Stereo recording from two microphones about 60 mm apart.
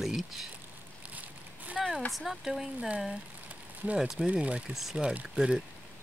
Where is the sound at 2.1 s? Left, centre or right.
Centre.